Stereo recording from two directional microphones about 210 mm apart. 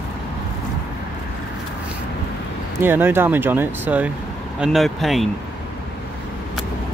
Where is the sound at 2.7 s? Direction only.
10° right (ahead or behind).